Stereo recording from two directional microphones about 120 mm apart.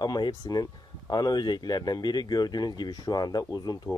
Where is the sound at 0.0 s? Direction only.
35° left (ahead or behind).